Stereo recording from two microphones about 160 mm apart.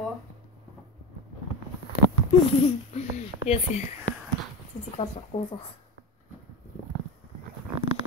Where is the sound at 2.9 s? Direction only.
40° left (ahead or behind).